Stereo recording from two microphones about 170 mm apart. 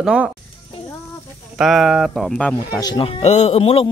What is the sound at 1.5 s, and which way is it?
A man's voice, centre (ahead or behind).